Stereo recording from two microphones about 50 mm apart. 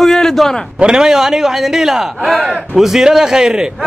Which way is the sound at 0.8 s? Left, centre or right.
Centre.